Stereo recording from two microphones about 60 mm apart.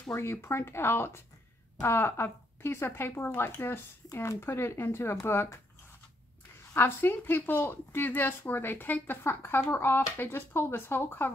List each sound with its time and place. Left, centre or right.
0.2 s speech: left
4.1 s speech: left
4.4 s speech: left
6.7 s speech: left